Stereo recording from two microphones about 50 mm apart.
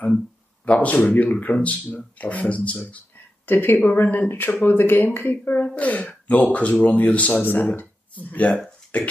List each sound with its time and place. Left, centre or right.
0.7 s speech: left
3.4 s speech: left
7.8 s a sound: left
8.9 s speech: left